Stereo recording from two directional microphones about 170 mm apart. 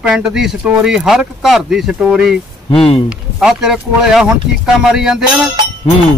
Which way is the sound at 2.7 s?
30° left (ahead or behind).